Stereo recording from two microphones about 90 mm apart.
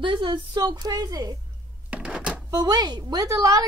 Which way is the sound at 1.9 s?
10° right (ahead or behind).